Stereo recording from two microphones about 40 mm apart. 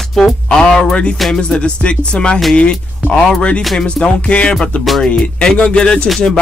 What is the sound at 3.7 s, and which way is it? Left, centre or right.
Speech, left.